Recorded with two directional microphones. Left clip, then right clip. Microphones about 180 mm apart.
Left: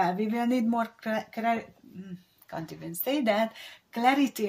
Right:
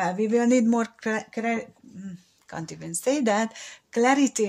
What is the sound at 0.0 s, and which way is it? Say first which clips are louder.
Speech: right 4 dB; 40° right (ahead or behind).